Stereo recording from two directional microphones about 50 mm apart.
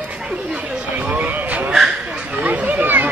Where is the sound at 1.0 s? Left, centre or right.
Right.